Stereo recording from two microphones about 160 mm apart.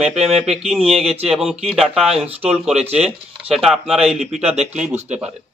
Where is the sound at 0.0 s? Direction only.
Centre (ahead or behind).